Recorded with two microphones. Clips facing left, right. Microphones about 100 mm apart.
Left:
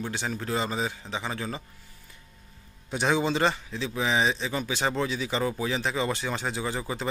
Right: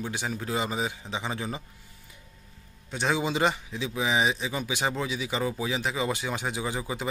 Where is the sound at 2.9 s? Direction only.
Centre (ahead or behind).